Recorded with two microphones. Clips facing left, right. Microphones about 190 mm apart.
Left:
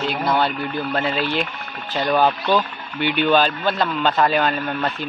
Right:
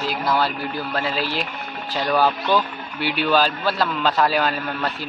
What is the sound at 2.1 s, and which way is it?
Speech, 20° left (ahead or behind).